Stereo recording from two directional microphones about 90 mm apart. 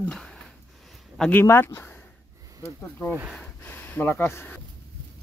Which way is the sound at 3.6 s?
20° left (ahead or behind).